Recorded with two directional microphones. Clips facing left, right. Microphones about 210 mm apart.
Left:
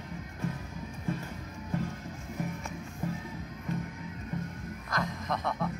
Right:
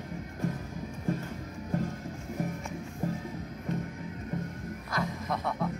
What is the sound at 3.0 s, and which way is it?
Music, 40° right (ahead or behind).